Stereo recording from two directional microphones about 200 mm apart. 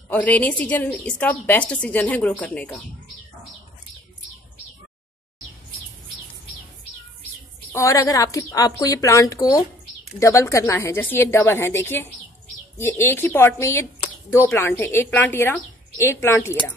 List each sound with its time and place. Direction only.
0.1 s a woman's voice: 5° left (ahead or behind)
7.7 s a woman's voice: 15° left (ahead or behind)